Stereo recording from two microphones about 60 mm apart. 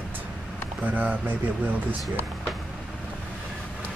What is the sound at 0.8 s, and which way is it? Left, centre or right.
Speech, right.